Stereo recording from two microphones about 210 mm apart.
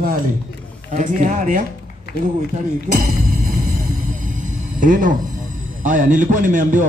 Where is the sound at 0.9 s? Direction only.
35° right (ahead or behind).